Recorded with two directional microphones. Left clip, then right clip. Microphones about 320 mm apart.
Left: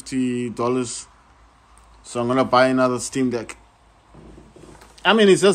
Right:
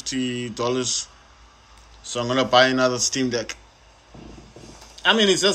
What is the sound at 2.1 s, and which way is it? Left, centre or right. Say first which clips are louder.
Speech: left 1 dB; centre.